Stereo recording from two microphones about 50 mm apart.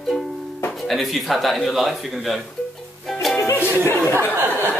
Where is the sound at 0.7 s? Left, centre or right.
Centre.